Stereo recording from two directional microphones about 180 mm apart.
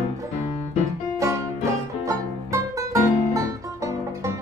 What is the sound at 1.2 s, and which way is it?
Music, 15° right (ahead or behind).